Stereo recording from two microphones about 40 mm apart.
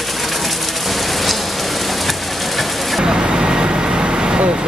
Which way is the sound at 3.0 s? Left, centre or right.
Centre.